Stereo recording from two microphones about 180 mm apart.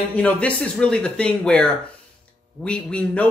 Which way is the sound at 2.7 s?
5° left (ahead or behind).